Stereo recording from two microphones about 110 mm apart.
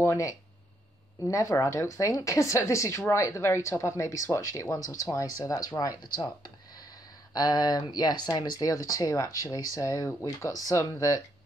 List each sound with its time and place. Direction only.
0.0 s speech: 25° left (ahead or behind)